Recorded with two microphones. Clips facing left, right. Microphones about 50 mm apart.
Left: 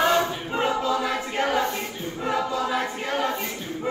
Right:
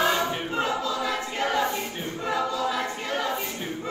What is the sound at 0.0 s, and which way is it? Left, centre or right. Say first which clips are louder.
Choir: left 3 dB; centre.